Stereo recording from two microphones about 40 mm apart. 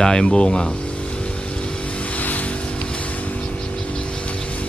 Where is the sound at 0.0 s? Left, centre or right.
Centre.